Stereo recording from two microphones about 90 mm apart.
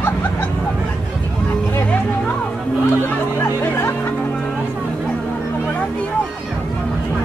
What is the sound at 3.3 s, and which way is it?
Music, 30° left (ahead or behind).